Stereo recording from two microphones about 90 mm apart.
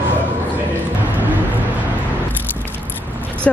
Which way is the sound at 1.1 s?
20° right (ahead or behind).